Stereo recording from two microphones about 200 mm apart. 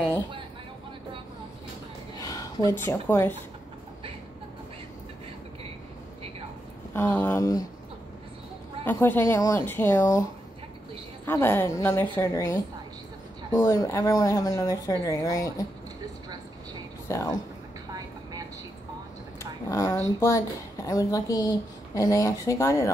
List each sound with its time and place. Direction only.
2.1 s speech: 15° left (ahead or behind)
7.0 s speech: 10° left (ahead or behind)
8.8 s speech: 10° left (ahead or behind)
11.2 s speech: 10° left (ahead or behind)
17.1 s speech: 15° left (ahead or behind)
19.7 s speech: 15° left (ahead or behind)